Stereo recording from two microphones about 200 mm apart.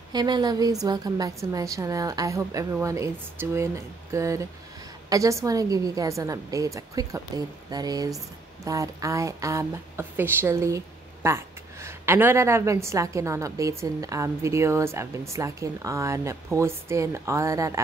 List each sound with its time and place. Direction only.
0.1 s a woman's voice: 20° right (ahead or behind)